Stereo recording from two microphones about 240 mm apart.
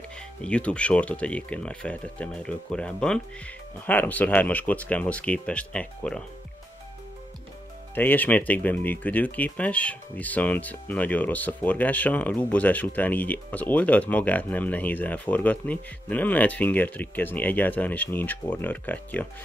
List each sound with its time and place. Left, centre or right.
0.4 s speech: centre
7.9 s speech: centre